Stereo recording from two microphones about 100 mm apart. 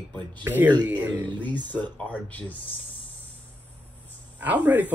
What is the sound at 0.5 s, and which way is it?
Speech, 15° right (ahead or behind).